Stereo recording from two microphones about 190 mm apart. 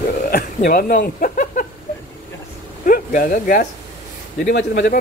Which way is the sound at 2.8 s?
50° left (ahead or behind).